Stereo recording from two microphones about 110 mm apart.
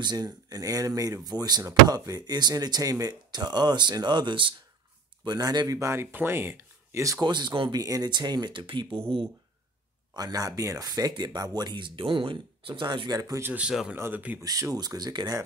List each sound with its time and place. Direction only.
0.0 s speech: 40° right (ahead or behind)
7.2 s speech: 45° right (ahead or behind)
7.7 s speech: 35° right (ahead or behind); by 9.0 s 50° right (ahead or behind)
10.1 s speech: 35° right (ahead or behind)
13.2 s speech: 30° right (ahead or behind)
13.5 s speech: 10° right (ahead or behind)
13.9 s speech: 25° right (ahead or behind)